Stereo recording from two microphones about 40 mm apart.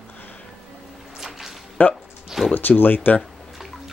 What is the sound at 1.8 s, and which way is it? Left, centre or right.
Speech, left.